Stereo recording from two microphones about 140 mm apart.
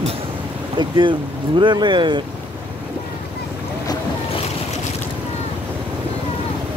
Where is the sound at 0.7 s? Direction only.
35° right (ahead or behind).